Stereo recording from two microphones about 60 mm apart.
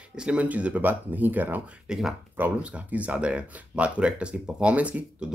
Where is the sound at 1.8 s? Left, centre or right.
Centre.